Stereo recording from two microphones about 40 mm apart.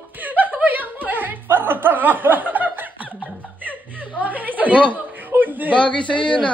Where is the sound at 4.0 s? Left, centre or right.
Right.